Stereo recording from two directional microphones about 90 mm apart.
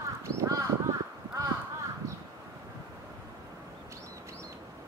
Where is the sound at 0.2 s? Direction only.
35° right (ahead or behind).